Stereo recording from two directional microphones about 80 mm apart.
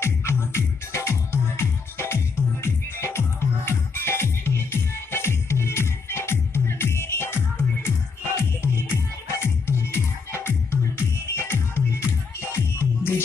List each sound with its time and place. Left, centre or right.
0.0 s music: left